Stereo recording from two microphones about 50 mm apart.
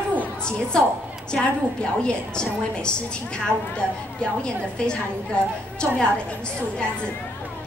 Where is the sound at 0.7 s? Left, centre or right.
Centre.